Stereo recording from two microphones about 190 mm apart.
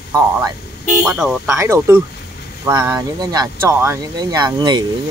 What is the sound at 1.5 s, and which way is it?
Speech, 15° right (ahead or behind).